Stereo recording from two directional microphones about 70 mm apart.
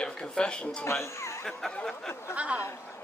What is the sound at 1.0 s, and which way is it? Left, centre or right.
Speech, left.